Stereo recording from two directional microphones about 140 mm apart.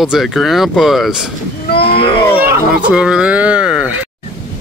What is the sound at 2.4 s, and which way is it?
Speech, 10° right (ahead or behind).